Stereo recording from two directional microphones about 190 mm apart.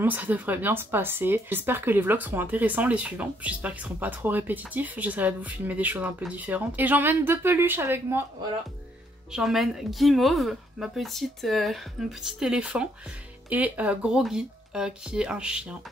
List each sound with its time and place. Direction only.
0.0 s speech: 10° right (ahead or behind)
9.3 s speech: centre (ahead or behind)